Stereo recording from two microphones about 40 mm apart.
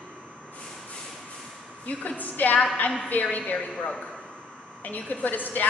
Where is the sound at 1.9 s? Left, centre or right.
Left.